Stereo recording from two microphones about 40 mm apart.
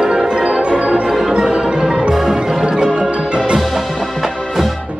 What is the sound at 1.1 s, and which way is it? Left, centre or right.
Music, centre.